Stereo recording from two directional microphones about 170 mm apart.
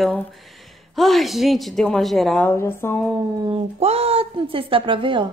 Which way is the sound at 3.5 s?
35° right (ahead or behind).